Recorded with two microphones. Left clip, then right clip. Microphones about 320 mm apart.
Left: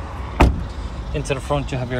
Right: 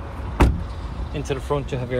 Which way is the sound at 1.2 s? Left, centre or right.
Centre.